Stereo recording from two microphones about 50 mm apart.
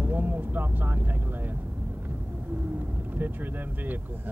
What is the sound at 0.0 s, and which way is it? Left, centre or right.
Speech, right.